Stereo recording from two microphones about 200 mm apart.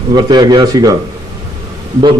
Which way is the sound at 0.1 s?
20° right (ahead or behind).